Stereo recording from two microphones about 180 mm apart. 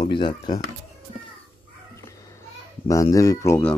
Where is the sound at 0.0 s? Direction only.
25° left (ahead or behind).